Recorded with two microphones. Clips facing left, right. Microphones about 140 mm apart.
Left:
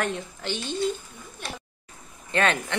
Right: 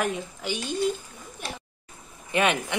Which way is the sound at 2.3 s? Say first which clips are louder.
Even; 15° right (ahead or behind).